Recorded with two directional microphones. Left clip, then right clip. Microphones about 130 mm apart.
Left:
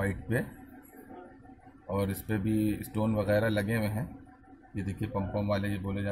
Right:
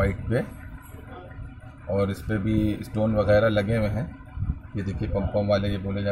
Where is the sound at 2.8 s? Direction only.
20° left (ahead or behind).